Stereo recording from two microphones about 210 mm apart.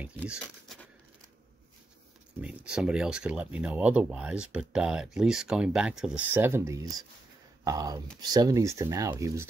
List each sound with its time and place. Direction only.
2.4 s speech: 5° right (ahead or behind)